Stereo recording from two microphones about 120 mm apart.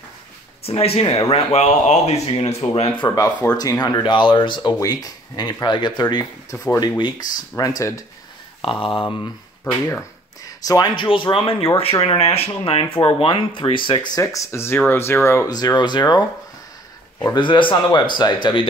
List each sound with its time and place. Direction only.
0.7 s speech: 55° left (ahead or behind)
1.3 s speech: 65° left (ahead or behind)
3.5 s speech: 30° left (ahead or behind)
6.5 s speech: 25° left (ahead or behind)
6.8 s speech: 35° left (ahead or behind)
8.6 s speech: 45° left (ahead or behind)
10.4 s speech: 30° left (ahead or behind)
15.5 s speech: 35° left (ahead or behind)
17.3 s speech: 40° left (ahead or behind)